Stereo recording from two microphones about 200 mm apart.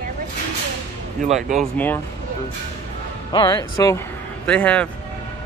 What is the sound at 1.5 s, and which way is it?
Speech, 10° left (ahead or behind).